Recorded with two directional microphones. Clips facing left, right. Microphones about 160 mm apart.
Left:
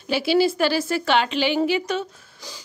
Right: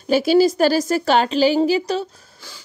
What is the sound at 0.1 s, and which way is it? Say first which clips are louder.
A woman's voice: right 5 dB; 45° right (ahead or behind).